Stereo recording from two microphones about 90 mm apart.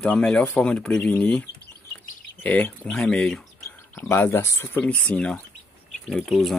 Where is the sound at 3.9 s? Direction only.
25° left (ahead or behind).